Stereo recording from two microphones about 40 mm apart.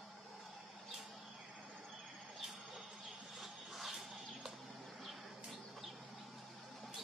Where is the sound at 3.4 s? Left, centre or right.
Centre.